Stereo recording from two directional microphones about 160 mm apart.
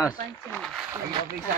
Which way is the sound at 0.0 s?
20° left (ahead or behind).